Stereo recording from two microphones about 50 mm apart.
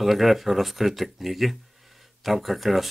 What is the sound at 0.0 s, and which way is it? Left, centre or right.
Speech, centre.